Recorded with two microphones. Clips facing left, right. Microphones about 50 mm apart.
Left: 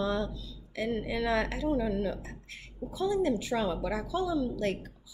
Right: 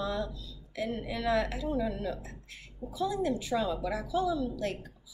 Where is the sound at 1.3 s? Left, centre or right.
Left.